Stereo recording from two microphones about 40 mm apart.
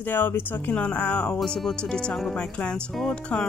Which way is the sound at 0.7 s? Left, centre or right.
Left.